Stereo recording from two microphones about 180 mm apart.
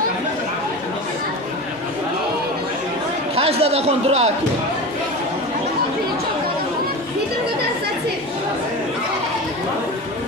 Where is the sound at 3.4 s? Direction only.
35° right (ahead or behind).